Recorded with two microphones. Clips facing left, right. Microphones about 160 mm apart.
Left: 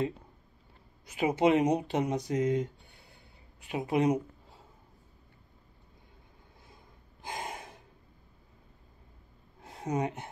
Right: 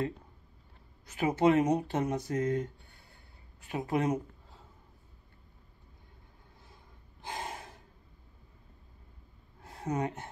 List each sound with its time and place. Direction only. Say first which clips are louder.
1.0 s speech: even; 15° left (ahead or behind)
7.2 s gasp: left 1 dB; 15° left (ahead or behind)
9.6 s a sound: left 1 dB; 20° left (ahead or behind)